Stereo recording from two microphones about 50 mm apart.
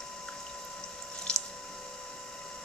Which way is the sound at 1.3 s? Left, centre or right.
Centre.